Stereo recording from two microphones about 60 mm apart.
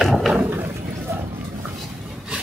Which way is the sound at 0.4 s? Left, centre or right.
Right.